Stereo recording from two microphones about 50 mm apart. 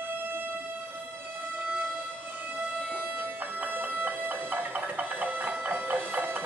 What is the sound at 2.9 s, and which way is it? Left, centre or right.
Music, right.